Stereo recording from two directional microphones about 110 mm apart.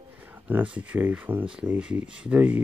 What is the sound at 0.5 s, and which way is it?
Speech, 15° right (ahead or behind).